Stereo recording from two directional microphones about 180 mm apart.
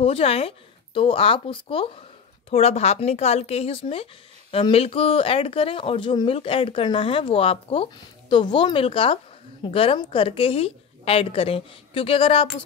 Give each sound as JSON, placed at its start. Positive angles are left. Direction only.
{"t": 0.0, "sound": "speech", "side_deg": 30}